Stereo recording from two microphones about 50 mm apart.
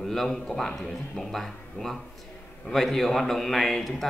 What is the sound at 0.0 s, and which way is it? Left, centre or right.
A man's voice, centre.